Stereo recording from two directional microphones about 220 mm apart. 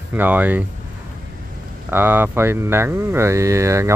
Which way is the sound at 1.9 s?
10° right (ahead or behind).